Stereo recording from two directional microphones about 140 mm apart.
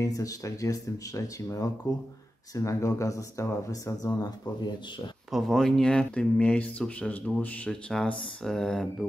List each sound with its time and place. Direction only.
0.0 s speech: 25° left (ahead or behind)
5.3 s speech: centre (ahead or behind)